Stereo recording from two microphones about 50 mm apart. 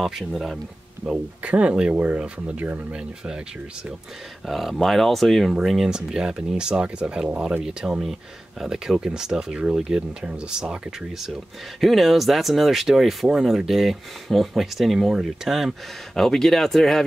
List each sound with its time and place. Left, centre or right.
0.0 s speech: centre
1.0 s speech: right
2.6 s speech: right
2.9 s speech: centre
4.5 s speech: centre
8.0 s speech: centre
16.2 s speech: centre